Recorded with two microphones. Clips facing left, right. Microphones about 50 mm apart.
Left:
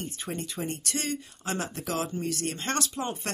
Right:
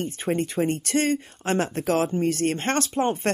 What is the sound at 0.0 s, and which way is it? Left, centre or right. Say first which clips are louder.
Speech: right 10 dB; right.